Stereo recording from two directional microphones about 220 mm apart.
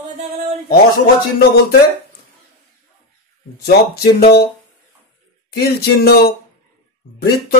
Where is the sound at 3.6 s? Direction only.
45° left (ahead or behind).